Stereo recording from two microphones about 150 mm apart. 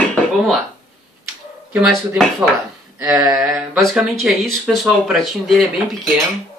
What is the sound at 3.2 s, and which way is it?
Mantra, 20° right (ahead or behind).